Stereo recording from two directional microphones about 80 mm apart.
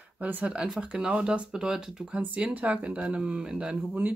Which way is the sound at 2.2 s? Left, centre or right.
Centre.